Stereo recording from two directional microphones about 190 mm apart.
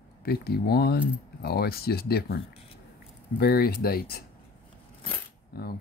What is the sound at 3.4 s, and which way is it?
Speech, 55° left (ahead or behind).